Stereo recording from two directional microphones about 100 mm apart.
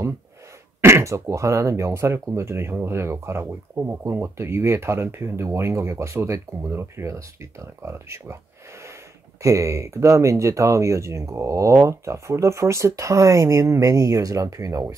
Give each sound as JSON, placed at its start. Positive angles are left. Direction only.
{"t": 0.7, "sound": "speech", "side_deg": -25}
{"t": 9.4, "sound": "speech", "side_deg": -30}